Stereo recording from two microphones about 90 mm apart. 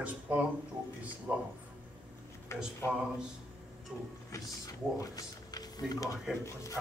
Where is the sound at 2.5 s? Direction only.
30° left (ahead or behind).